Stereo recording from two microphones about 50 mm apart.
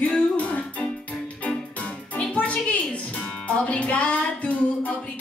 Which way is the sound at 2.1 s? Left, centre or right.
Left.